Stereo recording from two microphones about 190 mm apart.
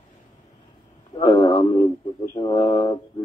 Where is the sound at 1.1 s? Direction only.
20° left (ahead or behind).